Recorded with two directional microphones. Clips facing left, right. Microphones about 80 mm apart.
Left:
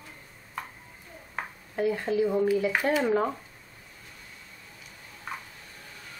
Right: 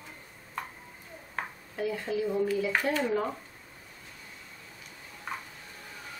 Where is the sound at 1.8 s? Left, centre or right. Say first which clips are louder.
Left 5 dB; left.